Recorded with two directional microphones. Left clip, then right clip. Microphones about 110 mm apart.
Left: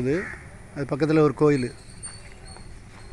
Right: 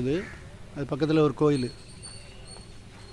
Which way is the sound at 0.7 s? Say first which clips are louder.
Left 3 dB; 5° left (ahead or behind).